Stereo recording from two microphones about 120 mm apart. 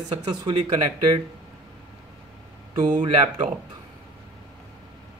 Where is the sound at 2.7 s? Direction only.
90° right.